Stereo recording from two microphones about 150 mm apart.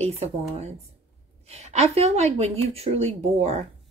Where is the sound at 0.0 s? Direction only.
45° right (ahead or behind).